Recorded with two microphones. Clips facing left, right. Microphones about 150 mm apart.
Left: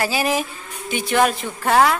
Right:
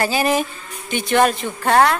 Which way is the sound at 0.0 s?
5° left (ahead or behind).